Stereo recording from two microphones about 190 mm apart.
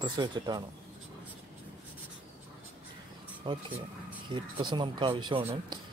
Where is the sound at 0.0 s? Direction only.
25° right (ahead or behind).